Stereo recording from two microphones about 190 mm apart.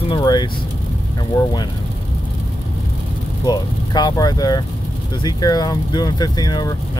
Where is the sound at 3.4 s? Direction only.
20° left (ahead or behind).